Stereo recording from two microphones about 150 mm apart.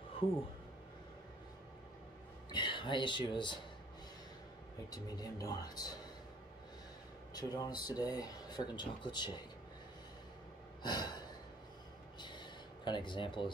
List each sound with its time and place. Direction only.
2.5 s speech: 30° left (ahead or behind)
4.9 s speech: 25° left (ahead or behind)
7.3 s speech: 25° left (ahead or behind)
10.8 s snort: 30° left (ahead or behind)
12.2 s a sound: 30° left (ahead or behind)